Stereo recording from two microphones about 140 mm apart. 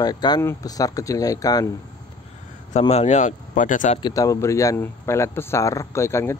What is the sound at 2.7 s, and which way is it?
Speech, 50° left (ahead or behind).